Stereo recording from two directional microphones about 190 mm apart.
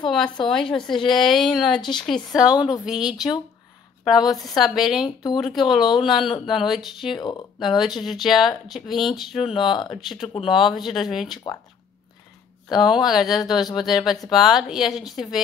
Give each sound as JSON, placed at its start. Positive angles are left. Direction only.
{"t": 0.1, "sound": "a woman's voice", "side_deg": 0}
{"t": 7.2, "sound": "speech", "side_deg": 20}
{"t": 7.8, "sound": "a woman's voice", "side_deg": 0}
{"t": 9.6, "sound": "speech", "side_deg": 25}
{"t": 9.8, "sound": "a woman's voice", "side_deg": 0}
{"t": 11.4, "sound": "speech", "side_deg": 20}
{"t": 12.7, "sound": "a woman's voice", "side_deg": 0}